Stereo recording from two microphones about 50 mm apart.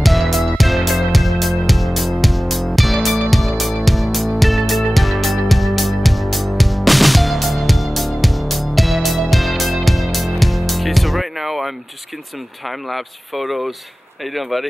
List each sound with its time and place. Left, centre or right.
0.0 s music: centre
12.6 s speech: centre